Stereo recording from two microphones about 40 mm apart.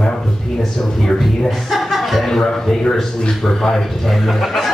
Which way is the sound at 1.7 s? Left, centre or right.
Centre.